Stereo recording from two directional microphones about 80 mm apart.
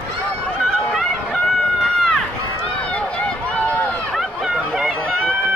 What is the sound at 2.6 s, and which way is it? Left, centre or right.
Run, centre.